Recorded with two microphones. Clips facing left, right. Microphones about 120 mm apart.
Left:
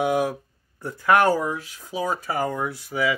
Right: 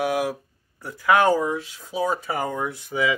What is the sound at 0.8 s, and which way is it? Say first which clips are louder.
Speech: even; 15° left (ahead or behind).